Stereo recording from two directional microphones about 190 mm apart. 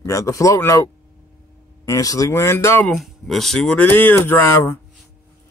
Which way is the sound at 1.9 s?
15° left (ahead or behind).